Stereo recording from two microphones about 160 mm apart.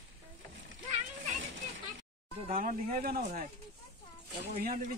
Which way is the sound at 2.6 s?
60° right (ahead or behind).